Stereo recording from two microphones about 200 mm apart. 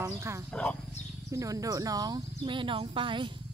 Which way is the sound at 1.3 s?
15° right (ahead or behind).